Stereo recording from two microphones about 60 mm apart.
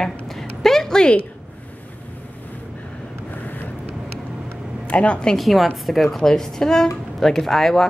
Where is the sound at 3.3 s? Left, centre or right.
Left.